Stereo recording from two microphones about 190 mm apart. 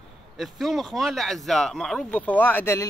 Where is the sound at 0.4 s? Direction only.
Centre (ahead or behind).